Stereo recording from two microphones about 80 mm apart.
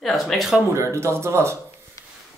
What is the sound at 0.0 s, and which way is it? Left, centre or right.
Speech, centre.